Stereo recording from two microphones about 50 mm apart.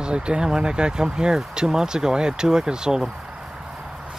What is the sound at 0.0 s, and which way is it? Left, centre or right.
Speech, centre.